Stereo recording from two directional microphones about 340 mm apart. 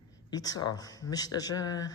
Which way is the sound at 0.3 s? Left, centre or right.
Centre.